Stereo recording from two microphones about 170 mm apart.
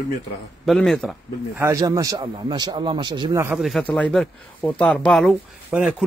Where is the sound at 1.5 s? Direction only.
20° right (ahead or behind).